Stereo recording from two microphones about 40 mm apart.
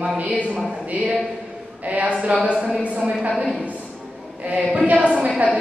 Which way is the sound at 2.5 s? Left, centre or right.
Centre.